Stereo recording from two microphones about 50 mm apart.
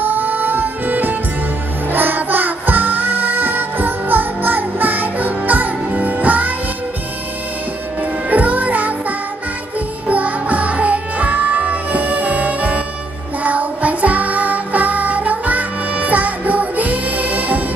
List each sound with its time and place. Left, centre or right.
0.0 s music: right
8.3 s music: right
10.0 s music: right